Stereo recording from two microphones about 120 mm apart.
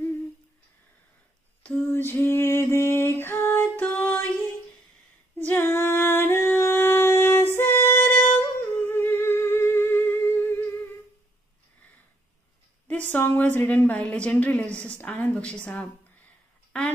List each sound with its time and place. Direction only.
1.6 s a sound: 20° left (ahead or behind)
5.4 s singing: 15° left (ahead or behind)
13.1 s a woman's voice: 15° left (ahead or behind)